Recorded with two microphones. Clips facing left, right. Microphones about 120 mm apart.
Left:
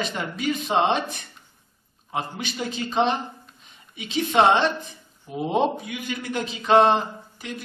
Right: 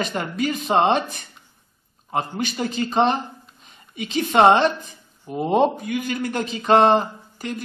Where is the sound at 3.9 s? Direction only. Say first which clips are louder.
Right 2 dB; 45° right (ahead or behind).